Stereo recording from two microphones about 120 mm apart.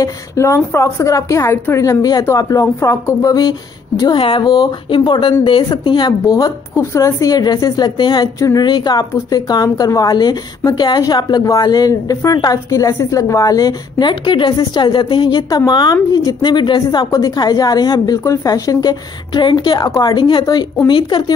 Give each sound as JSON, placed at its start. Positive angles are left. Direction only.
{"t": 0.0, "sound": "a woman's voice", "side_deg": 25}
{"t": 4.2, "sound": "speech", "side_deg": 50}
{"t": 4.5, "sound": "a woman's voice", "side_deg": 35}
{"t": 4.8, "sound": "a woman's voice", "side_deg": 45}
{"t": 8.4, "sound": "a woman's voice", "side_deg": 25}
{"t": 8.6, "sound": "a woman's voice", "side_deg": 35}